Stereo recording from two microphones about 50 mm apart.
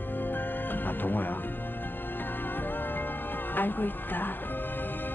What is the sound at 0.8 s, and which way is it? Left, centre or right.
Speech, left.